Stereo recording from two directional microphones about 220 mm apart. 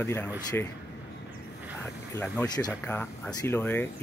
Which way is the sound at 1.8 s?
5° left (ahead or behind).